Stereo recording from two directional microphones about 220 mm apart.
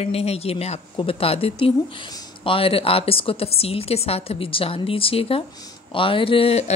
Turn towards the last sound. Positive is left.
turn(degrees=30)  # may be behind; listen again after turning